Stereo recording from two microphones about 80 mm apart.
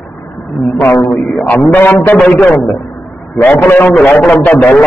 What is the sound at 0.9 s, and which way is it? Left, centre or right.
A man's voice, centre.